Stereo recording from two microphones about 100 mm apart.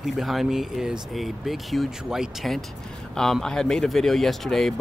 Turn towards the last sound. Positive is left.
turn(degrees=5)  # may be behind; listen again after turning